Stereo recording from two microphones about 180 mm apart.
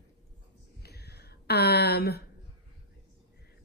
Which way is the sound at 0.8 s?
65° left (ahead or behind).